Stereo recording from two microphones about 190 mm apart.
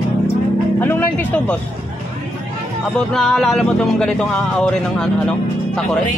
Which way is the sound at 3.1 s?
Centre (ahead or behind).